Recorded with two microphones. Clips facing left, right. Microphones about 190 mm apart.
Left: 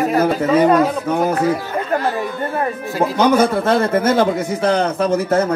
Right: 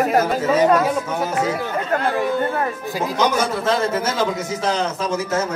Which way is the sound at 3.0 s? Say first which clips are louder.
Left 6 dB; 55° left (ahead or behind).